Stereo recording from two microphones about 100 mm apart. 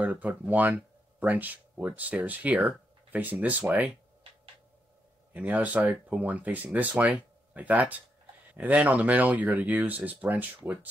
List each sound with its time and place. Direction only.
0.0 s speech: 15° right (ahead or behind)
5.3 s speech: 15° right (ahead or behind)